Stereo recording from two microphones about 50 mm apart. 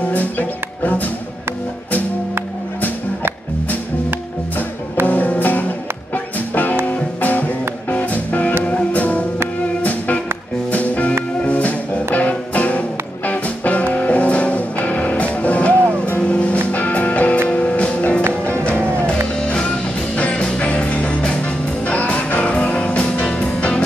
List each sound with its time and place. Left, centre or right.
0.1 s music: left
5.0 s music: left